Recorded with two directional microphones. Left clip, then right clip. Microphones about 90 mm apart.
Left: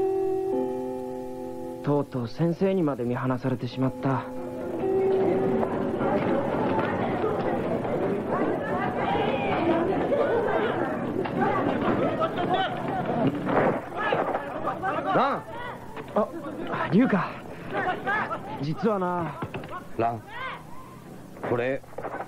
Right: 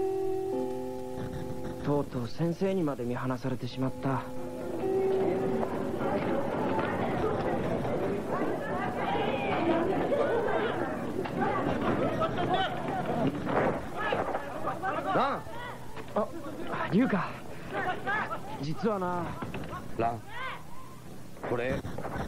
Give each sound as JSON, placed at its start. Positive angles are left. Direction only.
{"t": 1.9, "sound": "speech", "side_deg": 15}
{"t": 2.3, "sound": "speech", "side_deg": 30}
{"t": 4.7, "sound": "music", "side_deg": 25}
{"t": 16.2, "sound": "speech", "side_deg": 25}
{"t": 17.7, "sound": "a sound", "side_deg": 30}
{"t": 20.0, "sound": "a sound", "side_deg": 15}
{"t": 21.5, "sound": "speech", "side_deg": 30}